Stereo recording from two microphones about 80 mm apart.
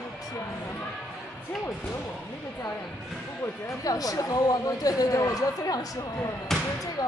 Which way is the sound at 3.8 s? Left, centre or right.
Left.